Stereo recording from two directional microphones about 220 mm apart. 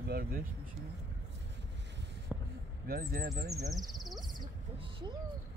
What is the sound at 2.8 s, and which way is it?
Speech, 45° right (ahead or behind).